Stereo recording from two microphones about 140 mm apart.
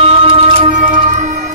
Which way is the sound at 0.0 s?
45° right (ahead or behind).